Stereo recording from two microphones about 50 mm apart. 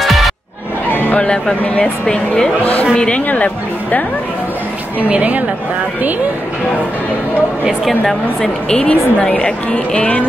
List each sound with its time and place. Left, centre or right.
0.0 s music: centre
1.1 s a woman's voice: left
3.3 s speech: left
5.0 s a woman's voice: right
8.0 s a woman's voice: centre
8.8 s speech: left